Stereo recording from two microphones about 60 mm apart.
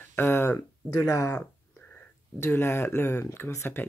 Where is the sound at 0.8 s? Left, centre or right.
Left.